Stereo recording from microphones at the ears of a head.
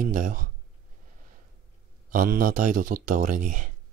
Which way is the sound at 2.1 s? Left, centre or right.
Right.